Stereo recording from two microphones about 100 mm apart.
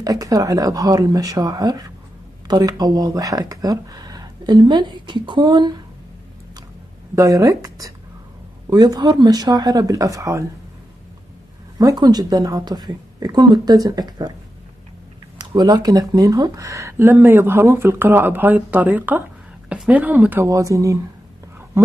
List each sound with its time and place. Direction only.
0.0 s speech: 35° right (ahead or behind)
7.2 s speech: 35° right (ahead or behind)
11.8 s speech: 40° right (ahead or behind)
15.5 s speech: 45° right (ahead or behind)
16.5 s speech: 30° right (ahead or behind)
20.4 s speech: 35° right (ahead or behind)